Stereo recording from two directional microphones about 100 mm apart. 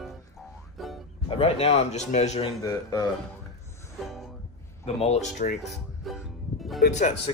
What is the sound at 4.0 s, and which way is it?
Music, centre (ahead or behind).